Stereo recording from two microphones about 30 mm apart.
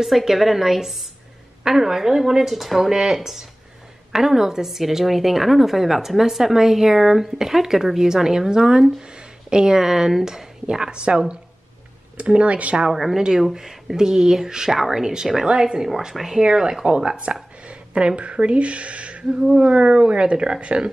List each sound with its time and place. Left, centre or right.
0.0 s a woman's voice: centre; by 9.8 s right
9.8 s a woman's voice: centre; by 11.1 s right
12.2 s speech: right
12.9 s a woman's voice: centre
16.4 s speech: right